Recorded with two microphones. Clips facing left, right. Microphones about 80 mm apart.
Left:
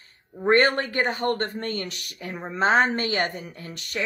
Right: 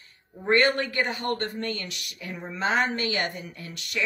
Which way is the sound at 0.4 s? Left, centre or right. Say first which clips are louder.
Left 3 dB; left.